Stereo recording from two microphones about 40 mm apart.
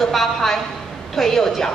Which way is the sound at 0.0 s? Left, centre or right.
Centre.